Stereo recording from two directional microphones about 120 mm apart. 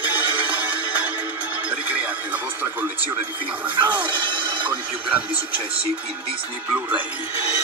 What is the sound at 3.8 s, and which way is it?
Speech, 15° right (ahead or behind).